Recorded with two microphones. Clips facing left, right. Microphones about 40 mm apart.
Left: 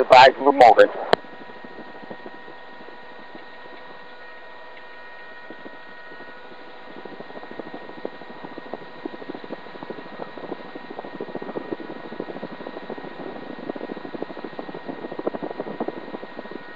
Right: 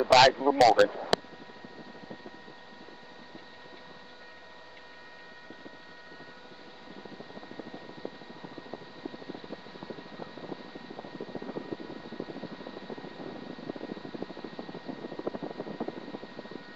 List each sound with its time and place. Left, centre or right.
0.0 s speech: left
7.0 s helicopter: left